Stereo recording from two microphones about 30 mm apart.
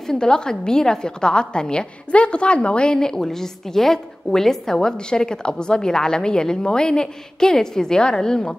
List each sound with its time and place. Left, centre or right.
0.0 s a woman's voice: left
3.0 s a woman's voice: centre